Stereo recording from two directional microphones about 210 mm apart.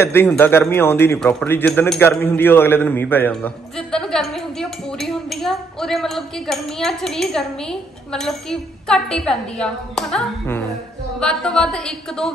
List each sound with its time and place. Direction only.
0.0 s speech: 10° left (ahead or behind)